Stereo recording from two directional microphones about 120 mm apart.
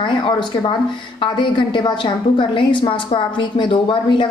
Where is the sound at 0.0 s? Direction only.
40° left (ahead or behind).